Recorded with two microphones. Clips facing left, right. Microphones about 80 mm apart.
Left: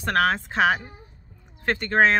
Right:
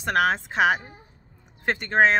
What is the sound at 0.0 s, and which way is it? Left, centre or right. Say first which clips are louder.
Speech: even; centre.